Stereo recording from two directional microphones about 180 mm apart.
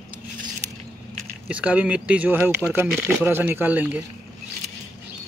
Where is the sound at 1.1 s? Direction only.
5° right (ahead or behind).